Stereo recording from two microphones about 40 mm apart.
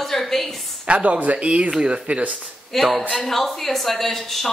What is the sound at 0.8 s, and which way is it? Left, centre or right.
Speech, right.